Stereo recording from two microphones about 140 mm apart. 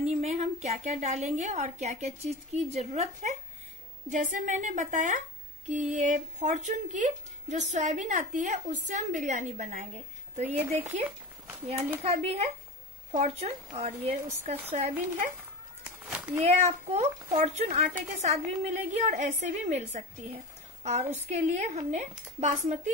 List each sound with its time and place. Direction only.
0.0 s a woman's voice: 50° right (ahead or behind)
16.3 s a woman's voice: 55° right (ahead or behind)